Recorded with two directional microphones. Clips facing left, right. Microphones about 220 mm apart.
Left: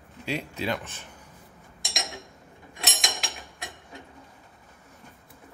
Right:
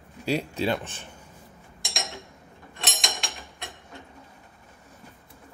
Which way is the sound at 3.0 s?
Centre (ahead or behind).